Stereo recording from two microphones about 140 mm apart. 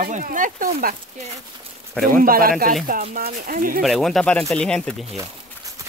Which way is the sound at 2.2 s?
90° right.